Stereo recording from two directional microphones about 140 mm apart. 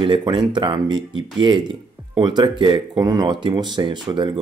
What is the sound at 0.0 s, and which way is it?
Speech, 35° right (ahead or behind).